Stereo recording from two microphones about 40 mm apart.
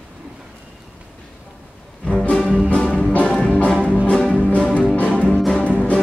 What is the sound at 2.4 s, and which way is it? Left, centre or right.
Music, right.